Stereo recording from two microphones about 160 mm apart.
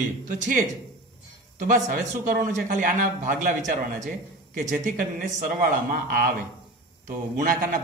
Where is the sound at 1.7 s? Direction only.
60° right (ahead or behind).